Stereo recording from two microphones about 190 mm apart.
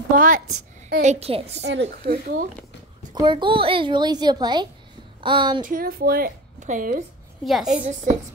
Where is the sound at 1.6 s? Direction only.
65° right (ahead or behind).